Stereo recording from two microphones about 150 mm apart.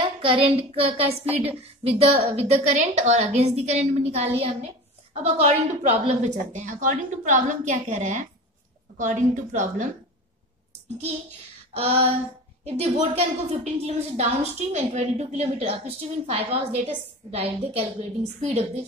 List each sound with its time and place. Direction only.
0.0 s a woman's voice: 35° right (ahead or behind); by 9.8 s 60° right (ahead or behind)
11.7 s a woman's voice: 40° right (ahead or behind)